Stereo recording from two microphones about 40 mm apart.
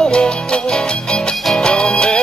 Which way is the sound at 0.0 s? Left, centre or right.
Left.